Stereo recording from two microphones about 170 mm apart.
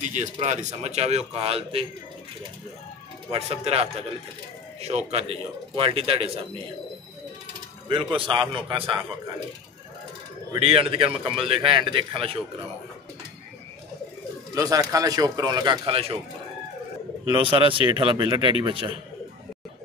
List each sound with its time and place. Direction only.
0.1 s speech: 45° right (ahead or behind)
3.4 s speech: 35° right (ahead or behind)
7.9 s a man's voice: 30° right (ahead or behind)
10.6 s a man's voice: 35° right (ahead or behind)
14.5 s a man's voice: 20° right (ahead or behind)
17.2 s speech: 30° right (ahead or behind)